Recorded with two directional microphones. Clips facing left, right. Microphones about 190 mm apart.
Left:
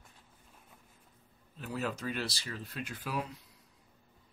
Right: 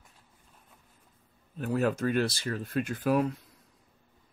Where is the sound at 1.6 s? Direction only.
50° right (ahead or behind).